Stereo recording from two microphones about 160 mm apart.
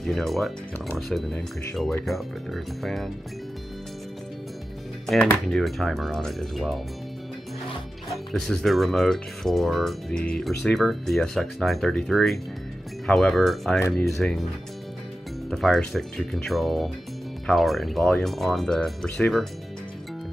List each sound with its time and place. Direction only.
0.0 s speech: centre (ahead or behind)
5.0 s speech: centre (ahead or behind)
8.1 s speech: centre (ahead or behind)
13.7 s speech: 15° left (ahead or behind)
14.0 s speech: centre (ahead or behind)
15.5 s speech: 5° left (ahead or behind)